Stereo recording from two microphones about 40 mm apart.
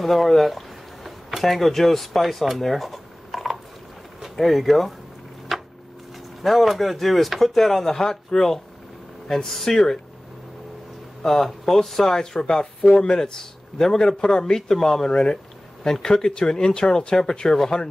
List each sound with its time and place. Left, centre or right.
0.0 s speech: centre
5.5 s a sound: centre
6.4 s speech: centre
11.2 s speech: centre